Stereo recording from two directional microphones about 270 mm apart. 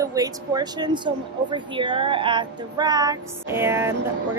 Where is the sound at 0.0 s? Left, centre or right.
Centre.